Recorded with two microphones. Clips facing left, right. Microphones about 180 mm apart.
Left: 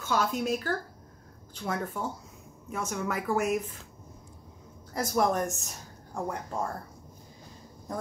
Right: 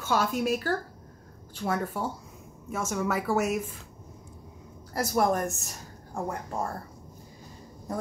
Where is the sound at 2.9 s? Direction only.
5° right (ahead or behind).